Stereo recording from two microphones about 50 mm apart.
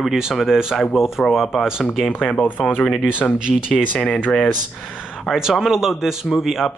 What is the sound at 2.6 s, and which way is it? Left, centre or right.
Speech, left.